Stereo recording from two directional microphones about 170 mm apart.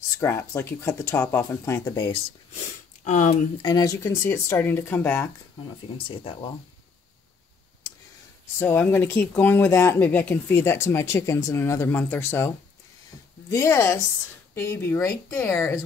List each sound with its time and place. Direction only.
0.2 s speech: 15° left (ahead or behind)
3.0 s speech: 45° left (ahead or behind)
3.6 s speech: 20° left (ahead or behind)
6.0 s speech: 30° left (ahead or behind)
8.5 s speech: 10° left (ahead or behind)